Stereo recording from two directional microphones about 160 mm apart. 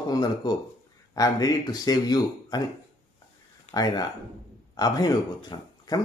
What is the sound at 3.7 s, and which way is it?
Speech, 25° left (ahead or behind).